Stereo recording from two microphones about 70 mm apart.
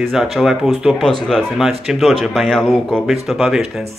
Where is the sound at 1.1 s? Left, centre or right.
Centre.